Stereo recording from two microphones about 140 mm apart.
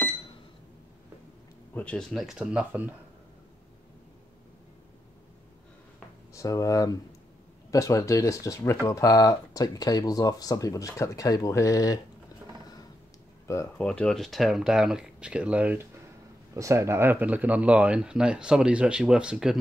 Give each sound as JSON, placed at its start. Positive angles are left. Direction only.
{"t": 1.7, "sound": "speech", "side_deg": 10}
{"t": 6.3, "sound": "speech", "side_deg": 25}
{"t": 13.5, "sound": "speech", "side_deg": 20}
{"t": 13.8, "sound": "speech", "side_deg": 5}